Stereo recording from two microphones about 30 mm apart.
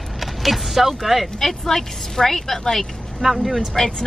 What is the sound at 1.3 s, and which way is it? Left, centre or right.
A woman's voice, centre.